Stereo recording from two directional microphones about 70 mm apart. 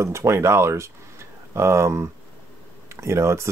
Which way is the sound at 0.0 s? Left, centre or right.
Right.